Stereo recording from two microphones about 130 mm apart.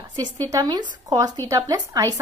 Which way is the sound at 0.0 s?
35° right (ahead or behind).